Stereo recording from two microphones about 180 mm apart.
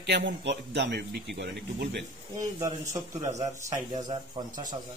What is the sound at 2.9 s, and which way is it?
Speech, 40° right (ahead or behind).